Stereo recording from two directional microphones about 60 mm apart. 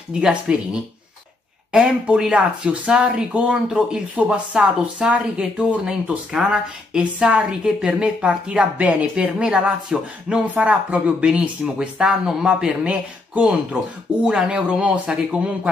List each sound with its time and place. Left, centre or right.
0.1 s a woman's voice: centre
1.7 s a woman's voice: centre
10.4 s a woman's voice: right